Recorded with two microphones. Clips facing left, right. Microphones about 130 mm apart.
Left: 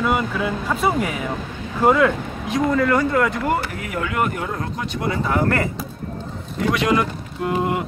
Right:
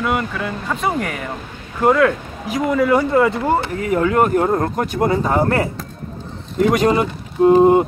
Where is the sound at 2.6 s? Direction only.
15° right (ahead or behind).